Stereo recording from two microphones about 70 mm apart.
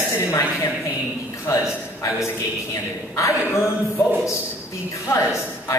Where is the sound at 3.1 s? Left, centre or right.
Left.